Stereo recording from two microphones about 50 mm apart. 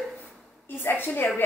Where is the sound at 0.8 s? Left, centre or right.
Left.